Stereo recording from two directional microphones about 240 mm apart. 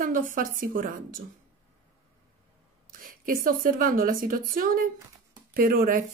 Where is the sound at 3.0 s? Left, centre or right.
Right.